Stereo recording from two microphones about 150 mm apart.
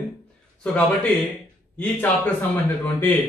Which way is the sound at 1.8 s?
10° left (ahead or behind).